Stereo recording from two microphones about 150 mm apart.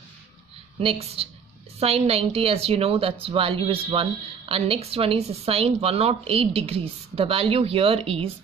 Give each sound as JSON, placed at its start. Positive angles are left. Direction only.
{"t": 0.7, "sound": "a woman's voice", "side_deg": -40}